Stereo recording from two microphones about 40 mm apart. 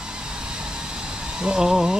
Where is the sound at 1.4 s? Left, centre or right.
Centre.